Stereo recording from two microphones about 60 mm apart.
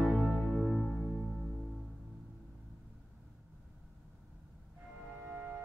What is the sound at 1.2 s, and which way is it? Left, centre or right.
Music, centre.